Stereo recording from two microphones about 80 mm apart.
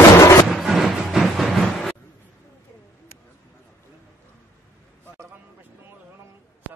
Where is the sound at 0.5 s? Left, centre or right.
Centre.